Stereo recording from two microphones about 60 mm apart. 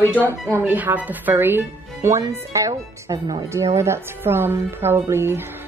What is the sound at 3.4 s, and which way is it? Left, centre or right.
Speech, right.